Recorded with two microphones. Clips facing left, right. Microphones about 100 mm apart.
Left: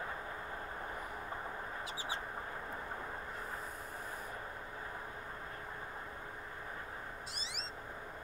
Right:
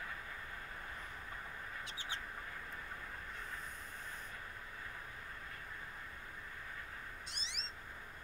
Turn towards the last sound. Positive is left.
turn(degrees=5)  # may be behind; listen again after turning